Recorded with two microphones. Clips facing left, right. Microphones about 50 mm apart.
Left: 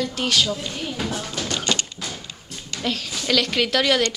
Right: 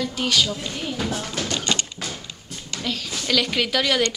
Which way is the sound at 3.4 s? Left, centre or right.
Centre.